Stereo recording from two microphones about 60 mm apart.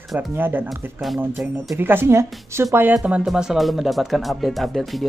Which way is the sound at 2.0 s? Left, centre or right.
Right.